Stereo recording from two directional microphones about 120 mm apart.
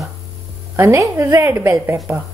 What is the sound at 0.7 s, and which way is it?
Speech, 25° right (ahead or behind).